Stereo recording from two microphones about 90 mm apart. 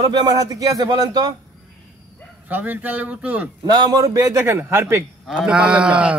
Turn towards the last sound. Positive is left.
turn(degrees=-15)  # may be behind; listen again after turning